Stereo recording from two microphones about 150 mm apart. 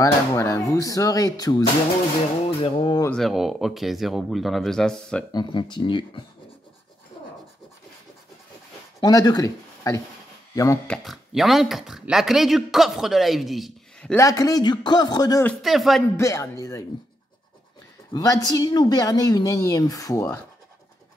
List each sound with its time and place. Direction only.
0.0 s a woman's voice: 20° left (ahead or behind)
2.6 s speech: 35° left (ahead or behind)
3.1 s speech: centre (ahead or behind)
5.3 s speech: 30° left (ahead or behind)
7.2 s scratch: 35° left (ahead or behind)
9.0 s speech: 25° left (ahead or behind)
10.9 s speech: centre (ahead or behind)
14.1 s a woman's voice: 20° left (ahead or behind)
15.6 s speech: centre (ahead or behind)
16.2 s a woman's voice: 20° left (ahead or behind)
18.1 s a woman's voice: 25° left (ahead or behind)